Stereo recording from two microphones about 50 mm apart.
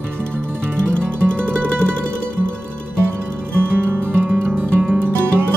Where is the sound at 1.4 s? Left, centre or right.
Left.